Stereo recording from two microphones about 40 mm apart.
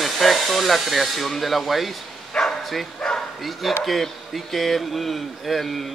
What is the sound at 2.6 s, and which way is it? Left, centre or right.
Bow-wow, centre.